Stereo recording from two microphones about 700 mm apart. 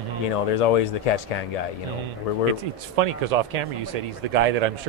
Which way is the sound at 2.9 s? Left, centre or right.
Right.